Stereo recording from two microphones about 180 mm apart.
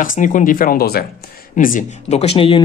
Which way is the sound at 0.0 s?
45° left (ahead or behind).